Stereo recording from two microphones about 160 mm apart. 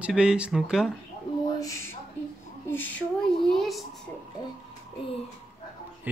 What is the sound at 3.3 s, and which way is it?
Speech, centre (ahead or behind).